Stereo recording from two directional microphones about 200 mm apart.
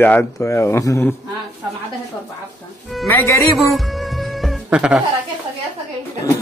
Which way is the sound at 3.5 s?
Centre (ahead or behind).